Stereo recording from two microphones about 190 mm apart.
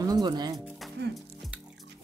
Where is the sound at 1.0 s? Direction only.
60° right (ahead or behind).